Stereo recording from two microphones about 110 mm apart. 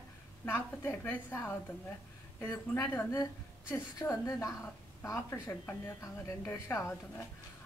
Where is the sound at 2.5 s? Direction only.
30° left (ahead or behind).